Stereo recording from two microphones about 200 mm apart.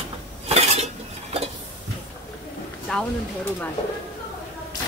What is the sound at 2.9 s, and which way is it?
Speech, 5° left (ahead or behind).